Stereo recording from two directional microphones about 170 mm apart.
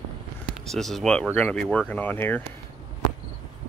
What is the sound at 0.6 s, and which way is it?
Speech, centre (ahead or behind).